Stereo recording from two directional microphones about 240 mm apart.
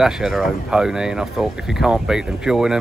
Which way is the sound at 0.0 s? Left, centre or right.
Centre.